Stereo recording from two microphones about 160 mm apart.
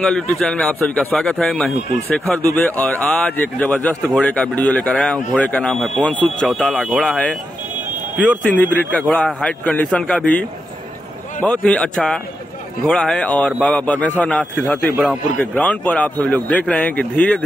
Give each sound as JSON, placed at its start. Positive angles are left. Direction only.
{"t": 0.0, "sound": "speech", "side_deg": 5}
{"t": 11.4, "sound": "speech", "side_deg": 5}